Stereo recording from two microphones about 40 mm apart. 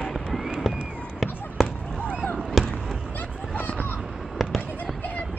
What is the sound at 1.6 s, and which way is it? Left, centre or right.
Fireworks, centre.